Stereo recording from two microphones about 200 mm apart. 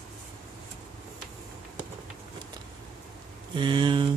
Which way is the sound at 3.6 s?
25° right (ahead or behind).